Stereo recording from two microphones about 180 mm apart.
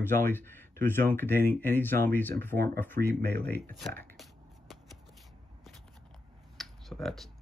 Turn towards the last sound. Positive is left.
turn(degrees=0)  # may be behind; listen again after turning